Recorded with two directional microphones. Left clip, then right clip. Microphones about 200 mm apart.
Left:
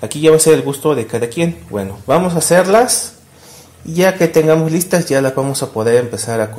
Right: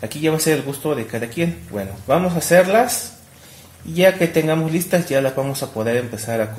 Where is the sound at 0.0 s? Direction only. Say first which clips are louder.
Left 10 dB; 35° left (ahead or behind).